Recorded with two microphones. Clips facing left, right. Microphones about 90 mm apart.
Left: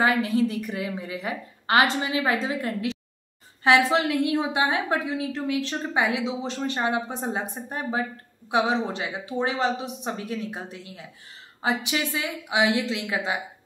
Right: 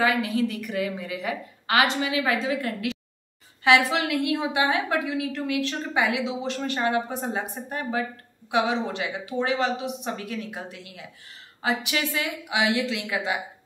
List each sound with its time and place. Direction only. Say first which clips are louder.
0.0 s a woman's voice: left 1 dB; 30° left (ahead or behind)